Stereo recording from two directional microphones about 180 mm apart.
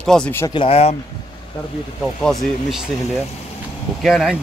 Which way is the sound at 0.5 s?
30° left (ahead or behind).